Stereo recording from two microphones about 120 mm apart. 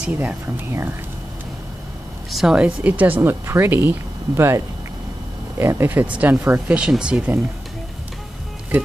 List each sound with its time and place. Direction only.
0.0 s speech: 10° right (ahead or behind)
0.7 s speech: 20° right (ahead or behind)
2.3 s speech: 5° right (ahead or behind)